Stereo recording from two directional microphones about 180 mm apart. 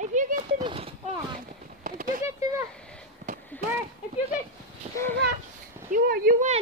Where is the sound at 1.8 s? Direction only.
45° right (ahead or behind).